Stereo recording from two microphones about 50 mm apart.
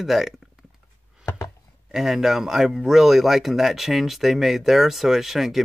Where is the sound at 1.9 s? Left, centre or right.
Centre.